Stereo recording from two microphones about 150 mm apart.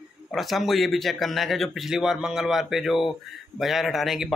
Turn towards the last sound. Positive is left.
turn(degrees=0)  # may be behind; listen again after turning